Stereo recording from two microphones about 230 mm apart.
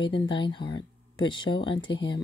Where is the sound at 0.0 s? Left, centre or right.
Left.